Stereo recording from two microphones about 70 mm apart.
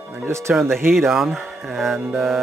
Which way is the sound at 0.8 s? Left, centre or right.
Centre.